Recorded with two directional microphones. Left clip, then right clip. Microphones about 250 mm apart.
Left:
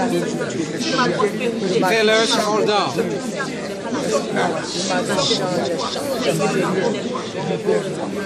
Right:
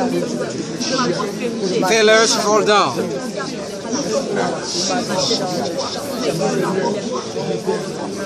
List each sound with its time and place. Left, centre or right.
1.9 s speech: right